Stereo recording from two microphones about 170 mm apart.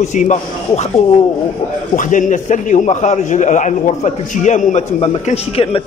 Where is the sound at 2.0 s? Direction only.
50° left (ahead or behind).